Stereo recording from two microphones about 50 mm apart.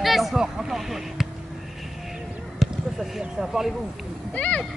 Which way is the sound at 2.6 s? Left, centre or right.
Centre.